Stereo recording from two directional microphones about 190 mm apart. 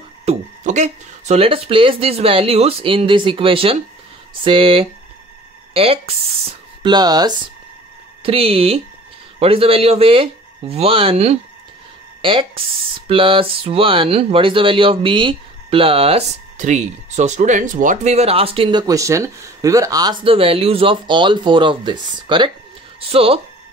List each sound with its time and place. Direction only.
0.2 s speech: 35° right (ahead or behind)